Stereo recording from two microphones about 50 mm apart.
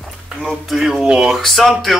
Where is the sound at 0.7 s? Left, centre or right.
Centre.